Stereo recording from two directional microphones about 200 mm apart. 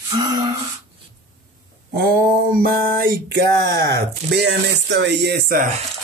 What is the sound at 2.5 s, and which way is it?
Speech, 50° right (ahead or behind).